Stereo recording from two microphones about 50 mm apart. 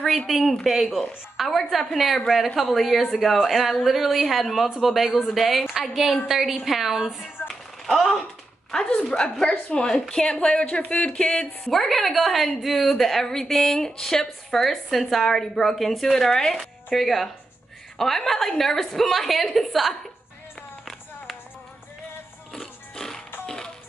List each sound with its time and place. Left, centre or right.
0.3 s a woman's voice: centre
8.7 s a woman's voice: centre
11.7 s a woman's voice: centre
22.5 s music: centre